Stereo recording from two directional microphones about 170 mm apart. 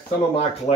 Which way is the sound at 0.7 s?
40° left (ahead or behind).